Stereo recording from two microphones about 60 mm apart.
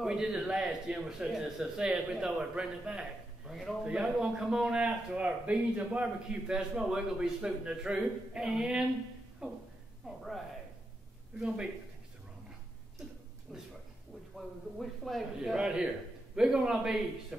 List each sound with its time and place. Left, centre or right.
0.0 s speech: centre
6.4 s speech: centre
10.0 s speech: centre
11.3 s speech: centre
13.5 s a man's voice: centre
15.5 s speech: centre